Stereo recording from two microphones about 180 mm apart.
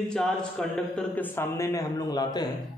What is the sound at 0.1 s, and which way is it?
A man's voice, 5° left (ahead or behind).